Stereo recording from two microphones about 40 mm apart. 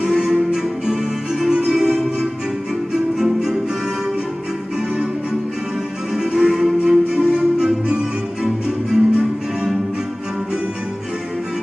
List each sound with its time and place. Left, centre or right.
0.0 s music: centre
1.7 s music: centre
6.1 s music: centre